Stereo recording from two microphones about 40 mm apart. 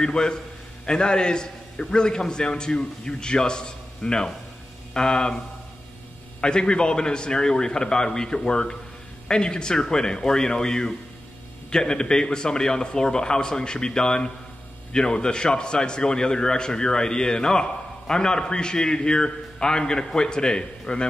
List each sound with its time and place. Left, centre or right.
0.0 s a man's voice: centre
6.4 s a man's voice: left